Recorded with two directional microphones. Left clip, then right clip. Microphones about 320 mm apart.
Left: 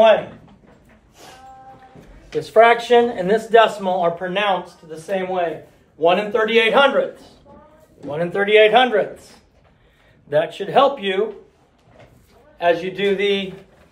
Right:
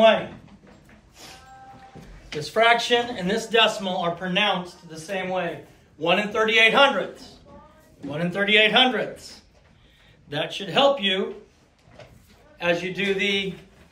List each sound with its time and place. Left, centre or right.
2.5 s a man's voice: centre
8.1 s a man's voice: left
10.3 s speech: centre
12.5 s a man's voice: left